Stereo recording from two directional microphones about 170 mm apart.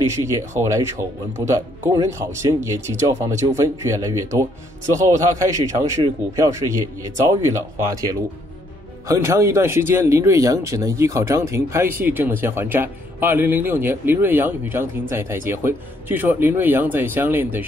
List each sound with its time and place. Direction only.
0.1 s a man's voice: 15° right (ahead or behind)